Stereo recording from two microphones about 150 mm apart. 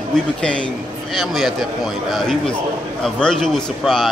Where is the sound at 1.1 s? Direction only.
Centre (ahead or behind).